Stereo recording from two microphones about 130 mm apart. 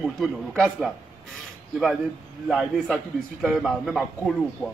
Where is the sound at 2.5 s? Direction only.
Centre (ahead or behind).